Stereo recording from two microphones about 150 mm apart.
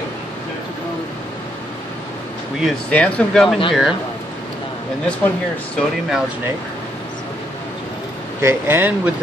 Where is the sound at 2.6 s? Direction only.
5° left (ahead or behind).